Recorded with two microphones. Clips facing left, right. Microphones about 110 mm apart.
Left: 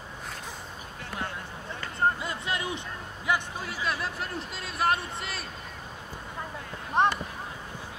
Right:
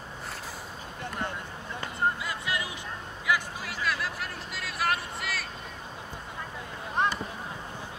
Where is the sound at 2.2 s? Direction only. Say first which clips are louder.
Left 1 dB; 30° left (ahead or behind).